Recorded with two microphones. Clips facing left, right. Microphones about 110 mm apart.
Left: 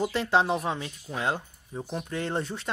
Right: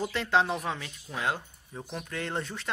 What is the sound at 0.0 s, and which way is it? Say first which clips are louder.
Speech: left 2 dB; 15° left (ahead or behind).